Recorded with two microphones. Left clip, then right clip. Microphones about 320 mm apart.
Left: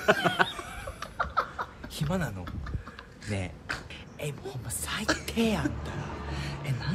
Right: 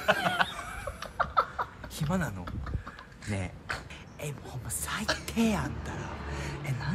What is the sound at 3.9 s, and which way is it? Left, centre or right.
Speech, centre.